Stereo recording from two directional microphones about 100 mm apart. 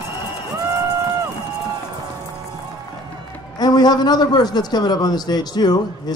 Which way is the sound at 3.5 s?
40° left (ahead or behind).